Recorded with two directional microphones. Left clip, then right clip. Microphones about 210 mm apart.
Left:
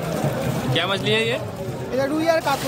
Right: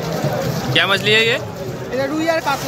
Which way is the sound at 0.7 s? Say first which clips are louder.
Right 7 dB; centre (ahead or behind).